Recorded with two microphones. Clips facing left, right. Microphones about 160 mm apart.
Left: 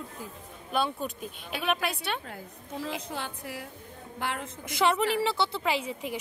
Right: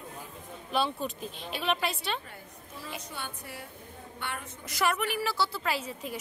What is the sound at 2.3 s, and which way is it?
A woman's voice, 90° left.